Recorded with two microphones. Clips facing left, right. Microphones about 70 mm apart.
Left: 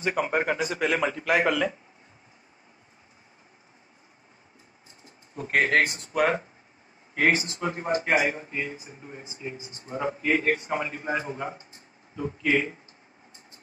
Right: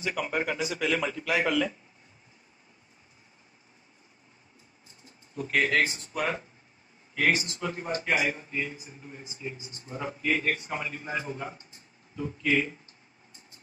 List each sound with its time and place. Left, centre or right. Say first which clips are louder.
0.0 s speech: left 4 dB; left
5.3 s speech: left 3 dB; left